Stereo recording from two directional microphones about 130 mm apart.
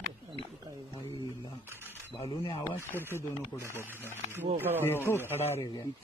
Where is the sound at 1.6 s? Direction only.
15° right (ahead or behind).